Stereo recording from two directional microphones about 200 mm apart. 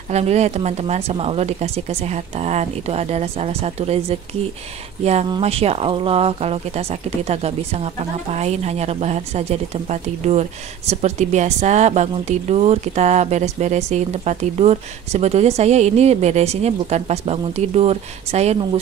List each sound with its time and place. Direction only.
0.1 s a woman's voice: 35° right (ahead or behind)
5.3 s a woman's voice: 30° right (ahead or behind)